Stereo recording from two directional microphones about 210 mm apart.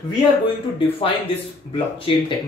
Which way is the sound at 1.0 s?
25° left (ahead or behind).